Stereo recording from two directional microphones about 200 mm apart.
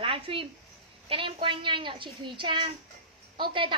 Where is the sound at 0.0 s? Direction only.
30° right (ahead or behind).